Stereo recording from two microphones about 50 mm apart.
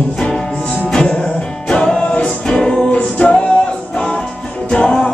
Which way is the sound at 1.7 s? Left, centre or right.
Centre.